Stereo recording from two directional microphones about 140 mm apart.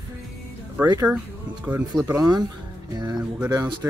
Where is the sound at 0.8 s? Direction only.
25° right (ahead or behind).